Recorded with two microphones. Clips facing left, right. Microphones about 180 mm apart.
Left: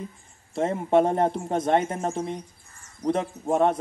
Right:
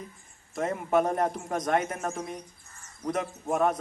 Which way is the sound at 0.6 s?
30° left (ahead or behind).